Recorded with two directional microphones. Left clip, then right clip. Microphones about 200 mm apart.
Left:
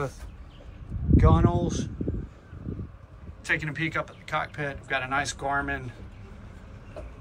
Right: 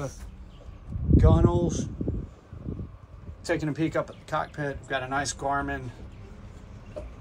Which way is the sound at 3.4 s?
30° right (ahead or behind).